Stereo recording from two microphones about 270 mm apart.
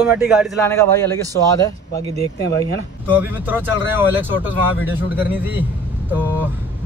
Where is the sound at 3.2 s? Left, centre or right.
Centre.